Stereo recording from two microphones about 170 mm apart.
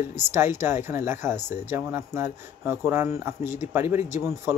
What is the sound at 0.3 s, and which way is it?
Speech, 15° right (ahead or behind).